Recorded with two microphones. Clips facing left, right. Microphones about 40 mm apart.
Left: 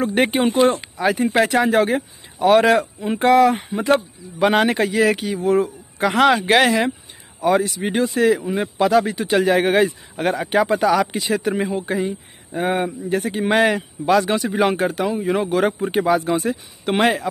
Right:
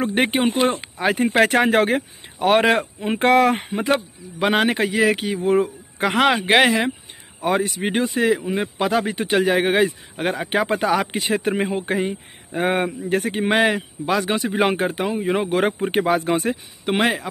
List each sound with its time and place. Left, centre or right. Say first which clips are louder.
0.1 s speech: left 2 dB; centre
0.9 s a man's voice: even; right
2.3 s speech: left 3 dB; right
4.4 s speech: left 2 dB; centre
5.2 s speech: left 1 dB; right
6.1 s speech: left 1 dB; centre
7.4 s speech: left 3 dB; right
8.1 s speech: left 2 dB; centre
9.3 s speech: left 2 dB; centre
10.5 s a man's voice: left 3 dB; right
13.5 s speech: left 2 dB; centre
15.5 s speech: left 1 dB; right
16.8 s speech: left 2 dB; centre